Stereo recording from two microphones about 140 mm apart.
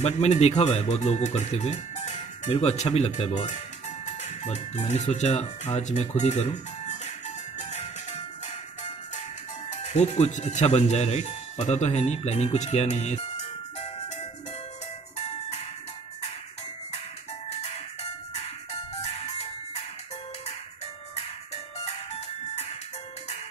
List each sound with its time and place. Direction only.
0.0 s speech: 50° left (ahead or behind)
4.0 s music: 55° left (ahead or behind)
9.7 s speech: 55° left (ahead or behind)
17.5 s music: 50° left (ahead or behind)
21.8 s music: 50° left (ahead or behind)